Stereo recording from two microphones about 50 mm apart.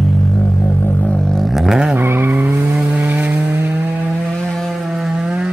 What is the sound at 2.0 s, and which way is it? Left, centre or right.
Vehicle, right.